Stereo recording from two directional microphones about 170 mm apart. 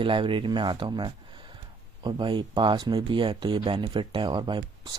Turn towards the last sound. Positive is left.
turn(degrees=-25)  # may be behind; listen again after turning